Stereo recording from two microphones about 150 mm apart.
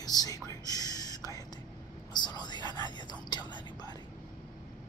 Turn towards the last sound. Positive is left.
turn(degrees=30)  # may be behind; listen again after turning